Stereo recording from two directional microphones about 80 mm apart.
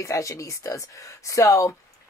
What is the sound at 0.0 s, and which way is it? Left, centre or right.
Speech, left.